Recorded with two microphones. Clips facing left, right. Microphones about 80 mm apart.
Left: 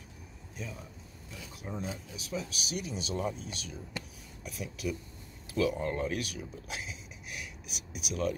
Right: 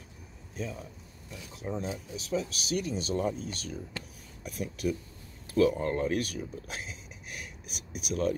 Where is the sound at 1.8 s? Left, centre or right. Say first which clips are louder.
Right 3 dB; right.